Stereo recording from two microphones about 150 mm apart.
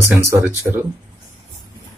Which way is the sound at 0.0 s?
15° right (ahead or behind).